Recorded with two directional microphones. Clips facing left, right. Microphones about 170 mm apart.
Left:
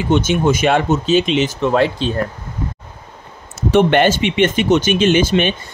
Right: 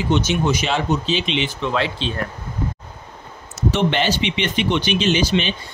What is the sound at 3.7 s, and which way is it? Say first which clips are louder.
Speech: left 8 dB; 55° left (ahead or behind).